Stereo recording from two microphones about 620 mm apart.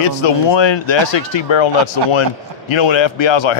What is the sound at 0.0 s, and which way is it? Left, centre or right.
A man's voice, left.